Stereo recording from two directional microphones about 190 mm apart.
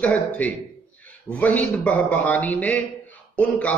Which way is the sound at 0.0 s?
10° left (ahead or behind).